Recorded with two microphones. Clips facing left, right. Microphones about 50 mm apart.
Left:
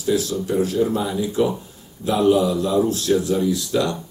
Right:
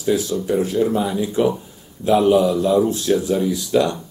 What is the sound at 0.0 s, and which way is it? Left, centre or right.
Speech, right.